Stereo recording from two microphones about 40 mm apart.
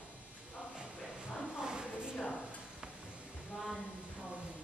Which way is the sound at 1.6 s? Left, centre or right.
Right.